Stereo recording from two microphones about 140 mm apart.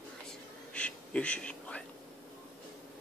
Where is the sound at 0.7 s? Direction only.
10° left (ahead or behind).